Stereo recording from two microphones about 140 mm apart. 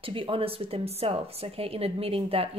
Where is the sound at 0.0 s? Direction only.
40° right (ahead or behind).